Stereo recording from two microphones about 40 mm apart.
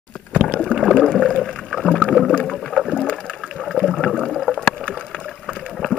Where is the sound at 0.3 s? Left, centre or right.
Right.